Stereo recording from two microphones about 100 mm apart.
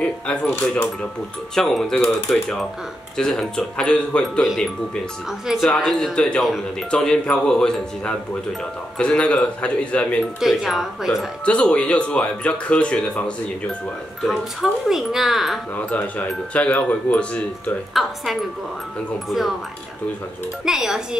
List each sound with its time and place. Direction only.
0.0 s speech: 15° left (ahead or behind)
1.5 s speech: 5° left (ahead or behind)
5.7 s speech: 5° left (ahead or behind)
10.4 s speech: 5° right (ahead or behind)
11.4 s speech: 10° left (ahead or behind)
14.2 s speech: 5° right (ahead or behind)
15.7 s speech: 15° left (ahead or behind)
17.9 s speech: centre (ahead or behind)
20.6 s speech: 5° right (ahead or behind)